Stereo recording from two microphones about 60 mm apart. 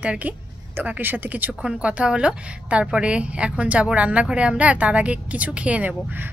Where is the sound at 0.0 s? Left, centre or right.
Right.